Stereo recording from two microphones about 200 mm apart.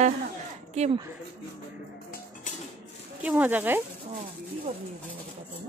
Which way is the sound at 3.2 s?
10° right (ahead or behind).